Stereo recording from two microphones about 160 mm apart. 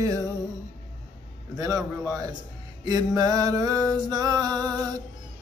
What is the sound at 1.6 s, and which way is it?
Music, 20° right (ahead or behind).